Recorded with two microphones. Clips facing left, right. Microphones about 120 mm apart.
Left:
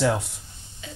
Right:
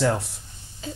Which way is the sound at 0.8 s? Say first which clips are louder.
Right 6 dB; 35° right (ahead or behind).